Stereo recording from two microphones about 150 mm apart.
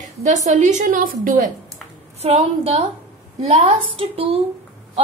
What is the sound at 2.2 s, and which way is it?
A woman's voice, 45° right (ahead or behind).